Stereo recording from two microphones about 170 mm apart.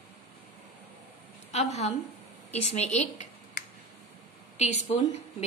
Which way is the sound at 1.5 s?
40° left (ahead or behind).